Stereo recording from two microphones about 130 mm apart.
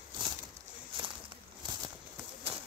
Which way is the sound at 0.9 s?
40° right (ahead or behind).